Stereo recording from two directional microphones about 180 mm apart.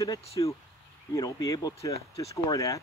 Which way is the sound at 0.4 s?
25° left (ahead or behind).